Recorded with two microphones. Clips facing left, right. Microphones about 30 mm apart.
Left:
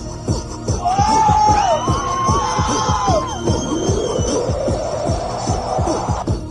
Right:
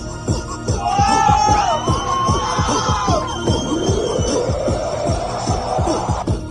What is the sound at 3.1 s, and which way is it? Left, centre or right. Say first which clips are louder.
Music: left 1 dB; right.